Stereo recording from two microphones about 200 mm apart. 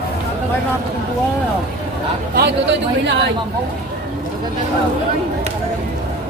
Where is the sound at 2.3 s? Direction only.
55° right (ahead or behind).